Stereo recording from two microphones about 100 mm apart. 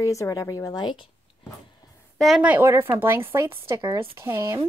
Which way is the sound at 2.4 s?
15° right (ahead or behind).